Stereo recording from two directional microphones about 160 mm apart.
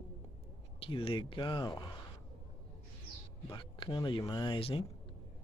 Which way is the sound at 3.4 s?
25° left (ahead or behind).